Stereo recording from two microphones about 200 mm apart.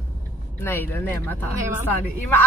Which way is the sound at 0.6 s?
10° left (ahead or behind).